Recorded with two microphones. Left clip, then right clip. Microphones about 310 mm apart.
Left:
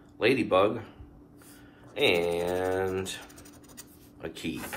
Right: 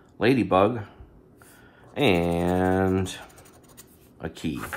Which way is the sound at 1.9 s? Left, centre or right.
Centre.